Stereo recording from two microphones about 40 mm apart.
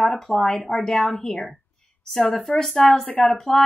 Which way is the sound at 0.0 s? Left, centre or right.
Centre.